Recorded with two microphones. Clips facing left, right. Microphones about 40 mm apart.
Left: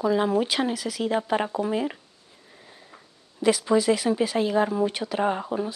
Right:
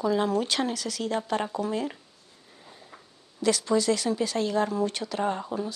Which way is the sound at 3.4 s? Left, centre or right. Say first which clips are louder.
Left 3 dB; centre.